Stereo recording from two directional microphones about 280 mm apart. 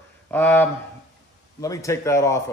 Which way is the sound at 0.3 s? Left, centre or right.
Centre.